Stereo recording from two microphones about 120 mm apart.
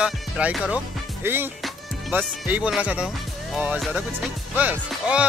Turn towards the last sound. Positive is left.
turn(degrees=-10)  # may be behind; listen again after turning